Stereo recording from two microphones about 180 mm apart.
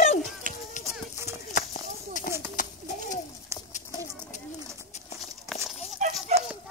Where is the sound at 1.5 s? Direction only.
45° left (ahead or behind).